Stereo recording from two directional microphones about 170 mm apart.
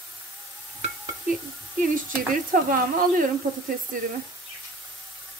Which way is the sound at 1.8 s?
55° right (ahead or behind).